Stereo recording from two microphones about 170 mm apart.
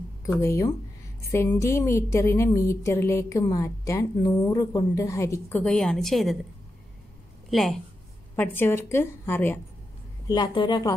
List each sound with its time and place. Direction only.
0.3 s a woman's voice: 15° left (ahead or behind)
5.6 s a woman's voice: 5° left (ahead or behind)
7.4 s speech: centre (ahead or behind)
8.4 s a woman's voice: 15° left (ahead or behind)
10.2 s speech: 25° left (ahead or behind)